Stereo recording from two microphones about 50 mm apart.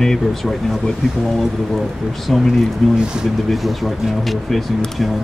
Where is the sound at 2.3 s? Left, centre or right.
Centre.